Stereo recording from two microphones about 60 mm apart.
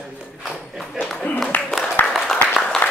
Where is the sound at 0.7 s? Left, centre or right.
Centre.